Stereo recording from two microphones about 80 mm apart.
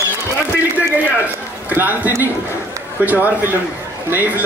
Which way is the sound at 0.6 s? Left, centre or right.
Centre.